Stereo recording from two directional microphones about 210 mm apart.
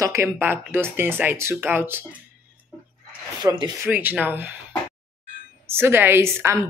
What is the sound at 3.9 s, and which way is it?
Speech, 10° right (ahead or behind).